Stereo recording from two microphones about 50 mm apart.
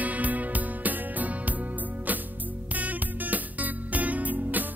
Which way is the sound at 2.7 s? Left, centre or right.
Right.